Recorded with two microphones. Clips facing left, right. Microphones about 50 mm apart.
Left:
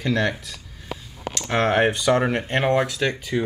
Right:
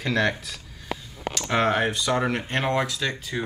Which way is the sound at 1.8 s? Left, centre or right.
Left.